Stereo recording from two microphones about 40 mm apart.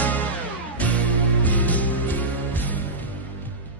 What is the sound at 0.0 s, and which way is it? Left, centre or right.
Music, left.